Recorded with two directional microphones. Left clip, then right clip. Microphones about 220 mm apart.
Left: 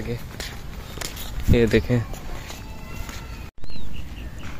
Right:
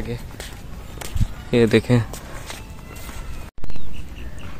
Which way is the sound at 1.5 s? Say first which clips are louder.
Right 3 dB; 15° right (ahead or behind).